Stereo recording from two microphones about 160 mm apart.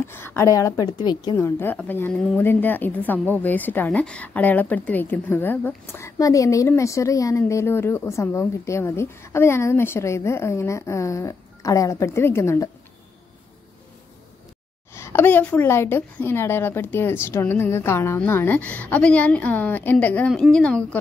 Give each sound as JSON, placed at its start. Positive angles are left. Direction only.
{"t": 0.0, "sound": "a woman's voice", "side_deg": 15}
{"t": 15.0, "sound": "a woman's voice", "side_deg": 15}